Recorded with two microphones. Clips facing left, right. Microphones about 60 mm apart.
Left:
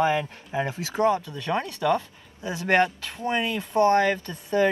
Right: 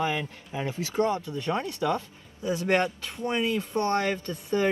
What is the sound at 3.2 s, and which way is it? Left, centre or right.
Speech, left.